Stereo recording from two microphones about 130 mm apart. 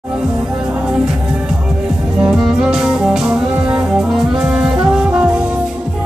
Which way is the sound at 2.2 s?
5° right (ahead or behind).